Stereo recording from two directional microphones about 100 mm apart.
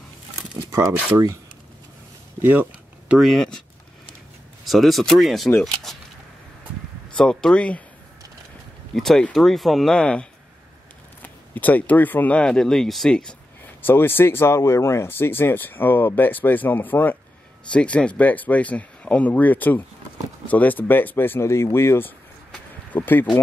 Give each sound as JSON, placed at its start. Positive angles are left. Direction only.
{"t": 0.7, "sound": "a sound", "side_deg": -30}
{"t": 1.1, "sound": "speech", "side_deg": -30}
{"t": 2.4, "sound": "a sound", "side_deg": -15}
{"t": 3.2, "sound": "speech", "side_deg": 0}
{"t": 4.6, "sound": "speech", "side_deg": 0}
{"t": 5.9, "sound": "a sound", "side_deg": 0}
{"t": 7.1, "sound": "speech", "side_deg": 10}
{"t": 8.9, "sound": "speech", "side_deg": 5}
{"t": 11.2, "sound": "speech", "side_deg": 15}
{"t": 13.8, "sound": "speech", "side_deg": 20}